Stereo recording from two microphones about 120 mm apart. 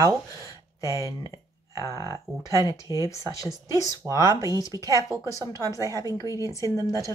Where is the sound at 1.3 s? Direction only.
30° right (ahead or behind).